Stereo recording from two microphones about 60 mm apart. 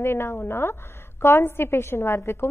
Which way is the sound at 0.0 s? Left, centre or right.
Left.